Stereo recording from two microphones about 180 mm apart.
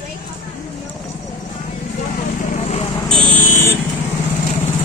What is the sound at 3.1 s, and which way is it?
Vehicle, 30° right (ahead or behind).